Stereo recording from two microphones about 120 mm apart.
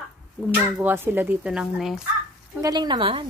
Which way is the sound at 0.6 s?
15° right (ahead or behind).